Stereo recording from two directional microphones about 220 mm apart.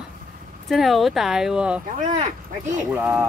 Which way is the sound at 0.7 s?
Centre (ahead or behind).